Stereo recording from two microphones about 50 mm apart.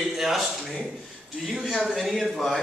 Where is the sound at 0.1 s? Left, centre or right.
Centre.